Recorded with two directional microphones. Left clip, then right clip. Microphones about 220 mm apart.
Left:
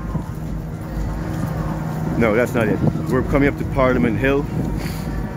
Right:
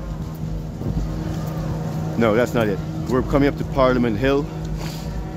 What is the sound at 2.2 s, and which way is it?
Speech, 5° right (ahead or behind).